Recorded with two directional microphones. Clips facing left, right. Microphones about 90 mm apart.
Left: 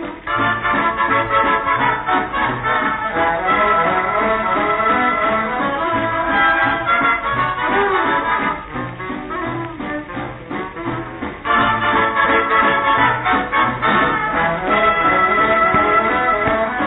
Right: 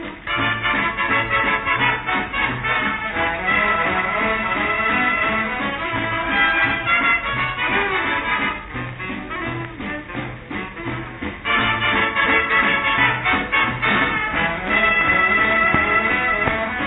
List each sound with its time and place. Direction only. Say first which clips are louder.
0.3 s music: left 4 dB; 35° left (ahead or behind)
11.4 s music: left 5 dB; 35° left (ahead or behind)